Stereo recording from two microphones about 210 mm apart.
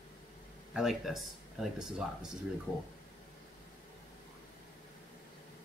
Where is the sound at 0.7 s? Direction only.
Centre (ahead or behind).